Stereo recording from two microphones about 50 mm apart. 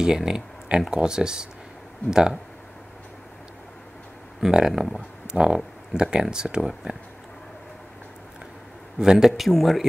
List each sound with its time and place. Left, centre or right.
0.0 s speech: centre
4.4 s speech: centre
6.6 s speech: centre
9.0 s speech: centre
9.4 s speech: centre